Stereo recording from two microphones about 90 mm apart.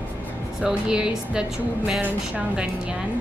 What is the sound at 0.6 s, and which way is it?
A woman's voice, 10° right (ahead or behind).